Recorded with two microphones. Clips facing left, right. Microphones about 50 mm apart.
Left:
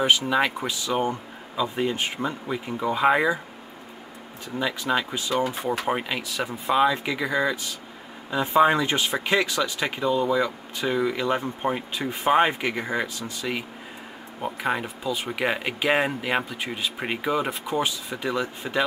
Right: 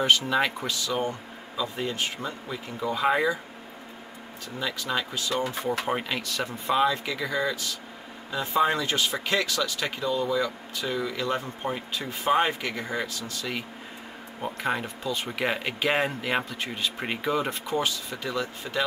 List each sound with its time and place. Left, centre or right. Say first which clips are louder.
0.0 s speech: left 2 dB; centre
4.6 s speech: left 4 dB; centre